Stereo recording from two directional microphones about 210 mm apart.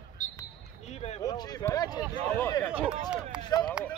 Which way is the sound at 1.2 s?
20° left (ahead or behind).